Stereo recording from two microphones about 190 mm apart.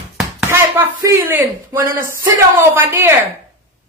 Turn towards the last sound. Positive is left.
turn(degrees=-10)  # may be behind; listen again after turning